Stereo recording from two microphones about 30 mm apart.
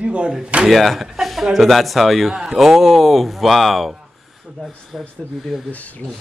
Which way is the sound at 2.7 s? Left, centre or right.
Centre.